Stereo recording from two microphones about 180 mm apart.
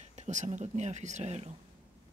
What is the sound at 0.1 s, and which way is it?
Speech, 40° right (ahead or behind).